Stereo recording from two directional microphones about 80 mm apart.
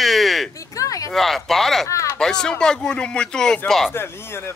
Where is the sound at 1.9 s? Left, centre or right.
Left.